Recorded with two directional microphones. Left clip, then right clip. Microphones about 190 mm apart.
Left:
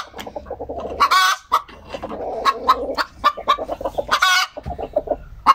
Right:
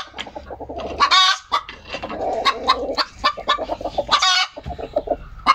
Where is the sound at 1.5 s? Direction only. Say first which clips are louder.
Left 2 dB; 45° left (ahead or behind).